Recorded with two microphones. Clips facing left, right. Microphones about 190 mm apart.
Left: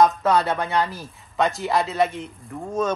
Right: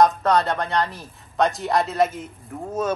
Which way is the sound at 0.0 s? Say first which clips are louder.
Even; 5° left (ahead or behind).